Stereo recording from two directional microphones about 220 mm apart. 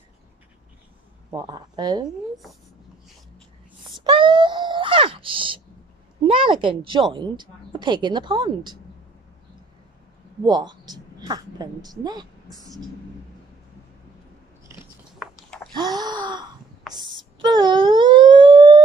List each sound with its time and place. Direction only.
1.3 s a woman's voice: 20° right (ahead or behind)
2.0 s speech: centre (ahead or behind)
4.0 s wail: 20° right (ahead or behind)
6.2 s a woman's voice: 25° right (ahead or behind)
10.4 s a woman's voice: 20° right (ahead or behind)
15.1 s a sound: centre (ahead or behind)
15.7 s gasp: 20° right (ahead or behind)
16.9 s a sound: 20° right (ahead or behind)
17.4 s wail: 20° right (ahead or behind)